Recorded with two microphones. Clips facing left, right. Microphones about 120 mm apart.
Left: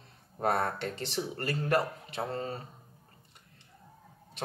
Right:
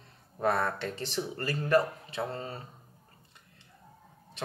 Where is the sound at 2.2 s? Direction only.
30° left (ahead or behind).